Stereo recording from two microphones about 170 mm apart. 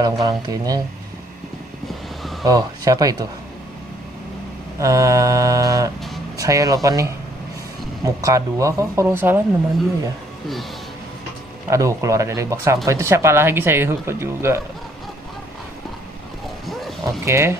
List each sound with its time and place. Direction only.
0.0 s speech: 20° right (ahead or behind)
2.4 s speech: 20° right (ahead or behind)
4.7 s speech: 20° right (ahead or behind)
11.7 s speech: 20° right (ahead or behind)
17.0 s speech: 15° right (ahead or behind)